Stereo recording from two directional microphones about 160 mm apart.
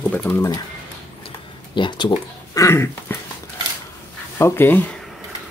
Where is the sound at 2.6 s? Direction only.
15° left (ahead or behind).